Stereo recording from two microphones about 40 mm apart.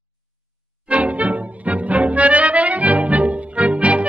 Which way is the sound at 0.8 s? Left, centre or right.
Right.